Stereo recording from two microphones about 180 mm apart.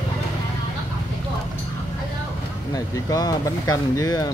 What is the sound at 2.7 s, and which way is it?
Speech, 20° left (ahead or behind).